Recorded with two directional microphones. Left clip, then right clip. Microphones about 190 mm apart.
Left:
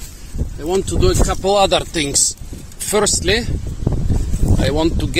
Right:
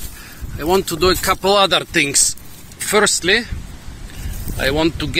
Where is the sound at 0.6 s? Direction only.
10° right (ahead or behind); by 3.5 s 15° left (ahead or behind).